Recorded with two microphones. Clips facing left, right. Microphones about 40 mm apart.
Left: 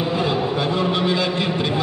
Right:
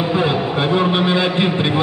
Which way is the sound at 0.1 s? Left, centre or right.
Right.